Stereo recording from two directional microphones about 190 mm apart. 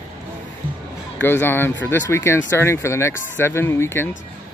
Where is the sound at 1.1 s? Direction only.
10° left (ahead or behind).